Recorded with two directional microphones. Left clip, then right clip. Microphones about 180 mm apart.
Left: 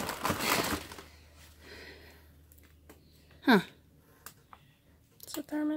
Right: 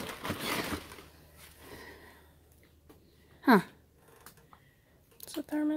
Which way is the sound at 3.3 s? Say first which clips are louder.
Right 1 dB; 10° right (ahead or behind).